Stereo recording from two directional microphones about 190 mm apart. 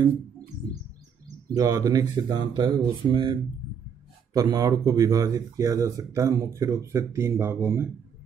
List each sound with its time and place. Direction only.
1.5 s speech: 20° right (ahead or behind)